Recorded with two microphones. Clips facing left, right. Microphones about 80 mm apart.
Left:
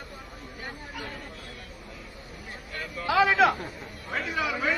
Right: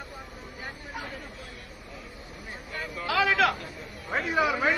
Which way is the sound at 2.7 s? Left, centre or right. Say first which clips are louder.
Right 1 dB; centre.